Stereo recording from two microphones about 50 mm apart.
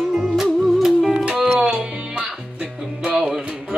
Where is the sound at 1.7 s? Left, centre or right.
Right.